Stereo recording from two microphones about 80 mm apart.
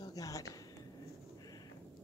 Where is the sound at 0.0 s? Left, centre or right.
Left.